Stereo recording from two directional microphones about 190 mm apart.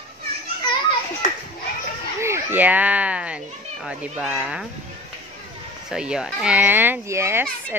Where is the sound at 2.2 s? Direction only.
10° right (ahead or behind).